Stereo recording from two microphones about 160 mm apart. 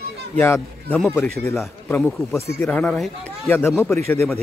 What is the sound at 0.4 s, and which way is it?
Speech, 15° left (ahead or behind).